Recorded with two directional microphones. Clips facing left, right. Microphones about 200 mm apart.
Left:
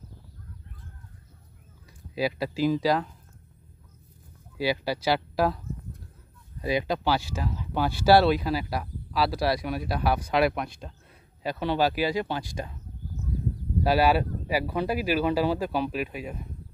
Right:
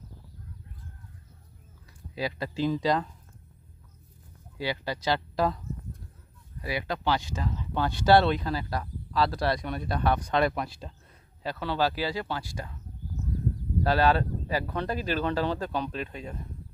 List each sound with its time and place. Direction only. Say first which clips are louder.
2.1 s speech: left 4 dB; 10° left (ahead or behind)
4.6 s speech: left 5 dB; 10° left (ahead or behind)
6.6 s speech: left 6 dB; 20° left (ahead or behind)
7.1 s speech: left 2 dB; 10° left (ahead or behind)
11.4 s speech: left 3 dB; 15° left (ahead or behind)
13.8 s speech: left 2 dB; 10° left (ahead or behind)